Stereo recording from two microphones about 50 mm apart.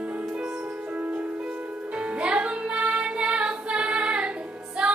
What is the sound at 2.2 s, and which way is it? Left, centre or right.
Female singing, right.